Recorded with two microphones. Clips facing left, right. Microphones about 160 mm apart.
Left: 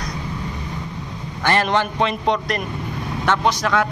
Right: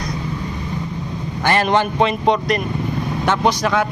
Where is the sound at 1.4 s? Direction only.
15° right (ahead or behind).